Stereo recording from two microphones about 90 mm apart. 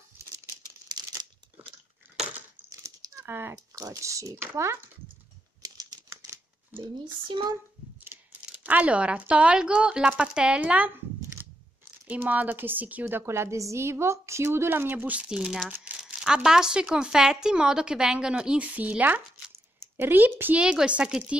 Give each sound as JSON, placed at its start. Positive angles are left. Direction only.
{"t": 2.7, "sound": "crumpling", "side_deg": -40}
{"t": 3.3, "sound": "speech", "side_deg": -25}
{"t": 3.5, "sound": "speech", "side_deg": -40}
{"t": 5.8, "sound": "typewriter", "side_deg": -45}
{"t": 6.8, "sound": "speech", "side_deg": -65}
{"t": 8.1, "sound": "tearing", "side_deg": -30}
{"t": 8.6, "sound": "speech", "side_deg": -15}
{"t": 12.1, "sound": "a woman's voice", "side_deg": -15}
{"t": 19.5, "sound": "a sound", "side_deg": -25}
{"t": 20.6, "sound": "speech", "side_deg": -10}